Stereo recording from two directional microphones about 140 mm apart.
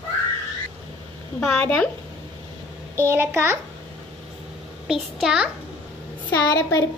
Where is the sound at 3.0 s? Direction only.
15° right (ahead or behind).